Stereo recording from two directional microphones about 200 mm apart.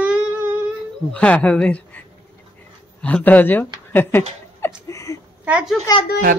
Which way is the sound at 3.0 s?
10° left (ahead or behind).